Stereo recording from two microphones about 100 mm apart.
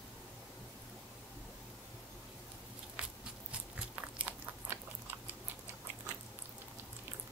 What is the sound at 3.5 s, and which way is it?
Biting, 10° right (ahead or behind).